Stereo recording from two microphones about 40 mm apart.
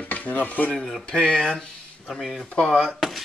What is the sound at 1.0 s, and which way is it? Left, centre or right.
Speech, left.